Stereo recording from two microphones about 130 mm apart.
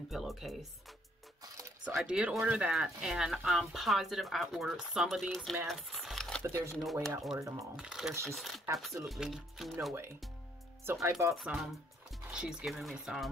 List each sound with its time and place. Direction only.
0.1 s speech: centre (ahead or behind)
1.4 s music: 25° right (ahead or behind)
2.0 s speech: 10° right (ahead or behind)
5.7 s a sound: centre (ahead or behind)
6.4 s speech: 20° right (ahead or behind)
6.8 s speech: centre (ahead or behind)
7.3 s speech: 25° right (ahead or behind)
7.7 s speech: 5° right (ahead or behind)
10.9 s speech: 25° right (ahead or behind)
11.3 s speech: centre (ahead or behind)